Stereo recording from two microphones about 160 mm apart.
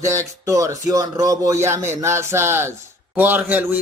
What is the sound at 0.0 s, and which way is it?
A man's voice, 20° right (ahead or behind).